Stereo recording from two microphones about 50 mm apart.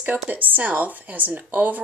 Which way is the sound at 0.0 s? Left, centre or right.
Right.